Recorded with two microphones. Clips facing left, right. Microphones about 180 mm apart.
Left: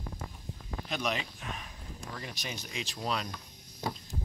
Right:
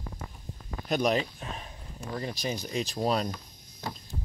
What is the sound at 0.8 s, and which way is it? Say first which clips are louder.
Speech: right 8 dB; 40° right (ahead or behind).